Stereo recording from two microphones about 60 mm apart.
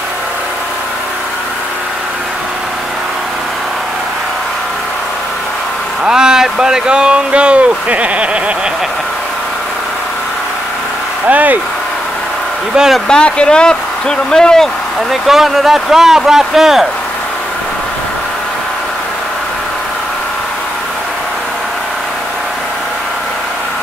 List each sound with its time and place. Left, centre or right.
6.0 s speech: centre
11.2 s speech: right
13.1 s speech: centre
15.0 s speech: centre